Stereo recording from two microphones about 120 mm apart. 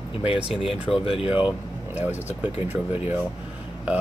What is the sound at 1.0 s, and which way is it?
Speech, 50° left (ahead or behind).